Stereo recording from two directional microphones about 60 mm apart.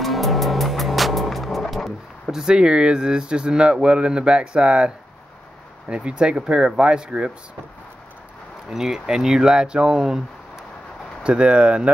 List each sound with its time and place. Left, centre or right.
0.0 s music: centre
2.3 s speech: centre
8.6 s speech: centre
11.2 s speech: centre